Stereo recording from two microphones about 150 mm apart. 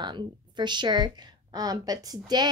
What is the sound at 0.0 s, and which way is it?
A woman's voice, 30° right (ahead or behind).